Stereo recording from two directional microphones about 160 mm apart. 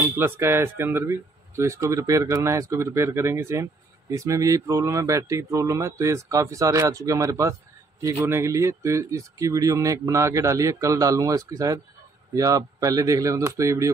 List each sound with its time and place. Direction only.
0.1 s speech: 15° right (ahead or behind)